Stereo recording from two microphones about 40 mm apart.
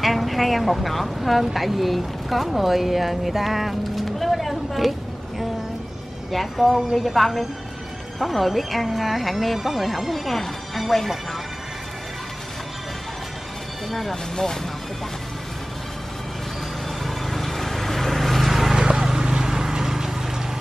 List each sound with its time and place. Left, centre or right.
0.0 s speech: centre
6.3 s speech: centre
13.8 s speech: centre
14.3 s speech: centre
17.0 s vehicle: centre
18.8 s a sound: centre